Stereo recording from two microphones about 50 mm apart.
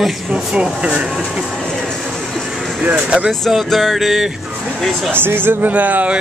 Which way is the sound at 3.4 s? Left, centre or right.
Centre.